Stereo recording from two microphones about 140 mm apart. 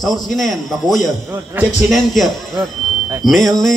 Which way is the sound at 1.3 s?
15° right (ahead or behind).